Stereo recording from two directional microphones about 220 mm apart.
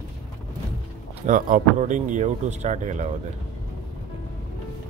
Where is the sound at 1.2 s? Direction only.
35° right (ahead or behind).